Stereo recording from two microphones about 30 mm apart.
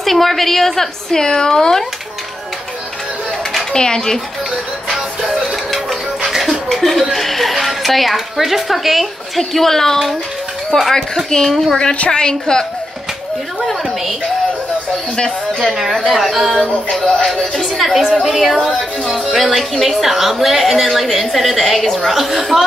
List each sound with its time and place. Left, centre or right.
0.0 s a woman's voice: centre
1.1 s a woman's voice: left
3.7 s a woman's voice: left
5.9 s music: centre
6.7 s a woman's voice: centre
12.1 s a woman's voice: left
15.6 s a woman's voice: centre
17.7 s a woman's voice: centre